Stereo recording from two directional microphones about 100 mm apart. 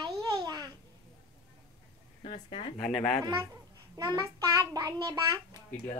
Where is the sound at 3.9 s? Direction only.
40° right (ahead or behind).